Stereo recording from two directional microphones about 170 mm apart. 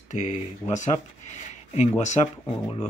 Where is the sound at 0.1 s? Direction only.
45° left (ahead or behind).